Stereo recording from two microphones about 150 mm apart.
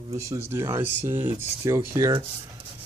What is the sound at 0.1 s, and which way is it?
Speech, 20° right (ahead or behind).